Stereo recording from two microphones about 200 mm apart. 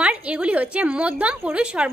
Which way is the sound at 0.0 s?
5° right (ahead or behind).